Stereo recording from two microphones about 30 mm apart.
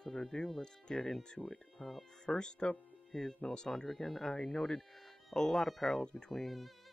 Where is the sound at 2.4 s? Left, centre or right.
Left.